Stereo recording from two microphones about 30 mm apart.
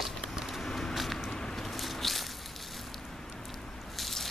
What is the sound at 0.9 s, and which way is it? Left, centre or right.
Vehicle, centre.